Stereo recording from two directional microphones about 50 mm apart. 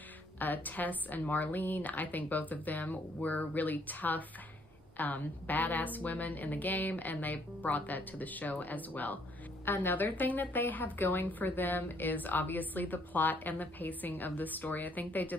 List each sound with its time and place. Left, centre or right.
0.4 s a woman's voice: left